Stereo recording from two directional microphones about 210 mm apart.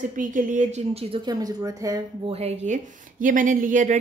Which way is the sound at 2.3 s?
35° right (ahead or behind).